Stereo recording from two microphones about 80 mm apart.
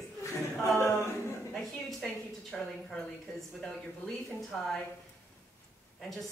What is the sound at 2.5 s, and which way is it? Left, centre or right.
A woman's voice, centre.